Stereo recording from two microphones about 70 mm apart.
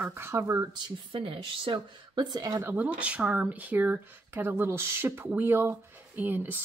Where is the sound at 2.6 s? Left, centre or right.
Right.